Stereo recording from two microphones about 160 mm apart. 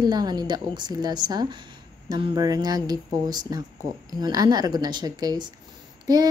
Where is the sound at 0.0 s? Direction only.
25° right (ahead or behind).